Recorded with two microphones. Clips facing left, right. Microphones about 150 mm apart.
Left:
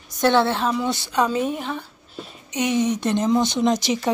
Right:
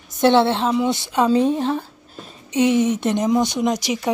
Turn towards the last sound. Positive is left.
turn(degrees=-10)  # may be behind; listen again after turning